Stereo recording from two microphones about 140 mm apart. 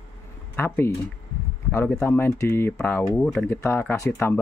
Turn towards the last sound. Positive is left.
turn(degrees=15)  # may be behind; listen again after turning